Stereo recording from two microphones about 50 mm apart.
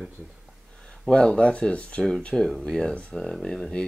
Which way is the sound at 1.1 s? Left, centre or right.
Centre.